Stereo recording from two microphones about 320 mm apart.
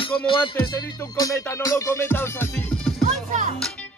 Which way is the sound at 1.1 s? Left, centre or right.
Centre.